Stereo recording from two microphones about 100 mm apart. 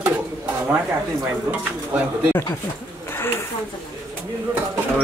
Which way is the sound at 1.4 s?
15° right (ahead or behind).